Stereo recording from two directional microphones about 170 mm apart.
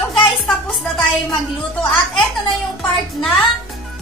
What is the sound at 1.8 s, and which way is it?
Music, centre (ahead or behind).